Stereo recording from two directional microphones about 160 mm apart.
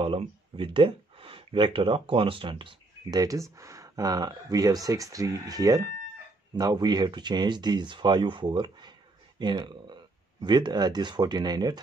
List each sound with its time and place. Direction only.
0.0 s speech: 35° right (ahead or behind)